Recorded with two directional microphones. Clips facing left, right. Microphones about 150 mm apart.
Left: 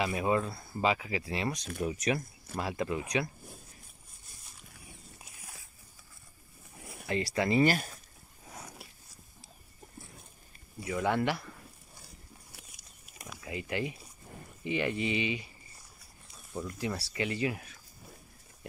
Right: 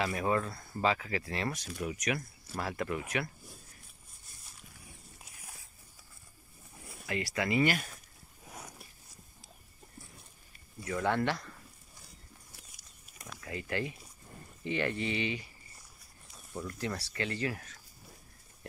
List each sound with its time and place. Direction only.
0.0 s speech: 15° left (ahead or behind)
1.8 s speech: 30° left (ahead or behind)
2.5 s speech: 20° left (ahead or behind)
7.1 s speech: 25° left (ahead or behind)
10.8 s speech: 10° left (ahead or behind)
13.2 s speech: 15° left (ahead or behind)
16.5 s speech: 15° left (ahead or behind)